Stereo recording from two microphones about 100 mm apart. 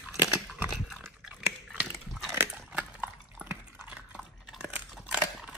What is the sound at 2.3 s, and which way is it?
Biting, 25° right (ahead or behind).